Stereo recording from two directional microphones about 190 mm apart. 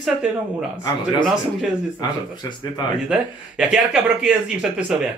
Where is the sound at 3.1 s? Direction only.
5° right (ahead or behind).